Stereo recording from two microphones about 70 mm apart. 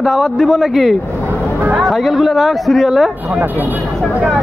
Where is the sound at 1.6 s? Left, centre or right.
Right.